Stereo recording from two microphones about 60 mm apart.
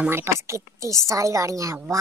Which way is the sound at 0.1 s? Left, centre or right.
Right.